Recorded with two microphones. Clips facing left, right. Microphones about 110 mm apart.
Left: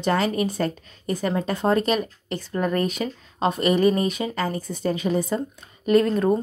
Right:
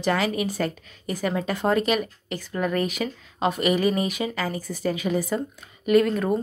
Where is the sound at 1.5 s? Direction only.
25° left (ahead or behind).